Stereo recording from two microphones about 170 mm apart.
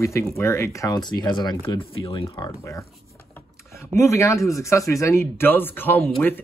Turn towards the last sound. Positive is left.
turn(degrees=10)  # may be behind; listen again after turning